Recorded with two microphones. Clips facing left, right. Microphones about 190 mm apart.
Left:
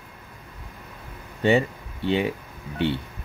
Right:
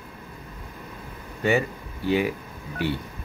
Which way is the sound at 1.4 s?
25° left (ahead or behind).